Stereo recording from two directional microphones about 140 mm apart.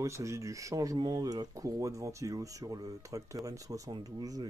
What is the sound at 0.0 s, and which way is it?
Speech, 20° right (ahead or behind).